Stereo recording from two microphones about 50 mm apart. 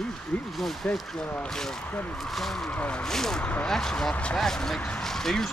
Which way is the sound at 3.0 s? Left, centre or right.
Centre.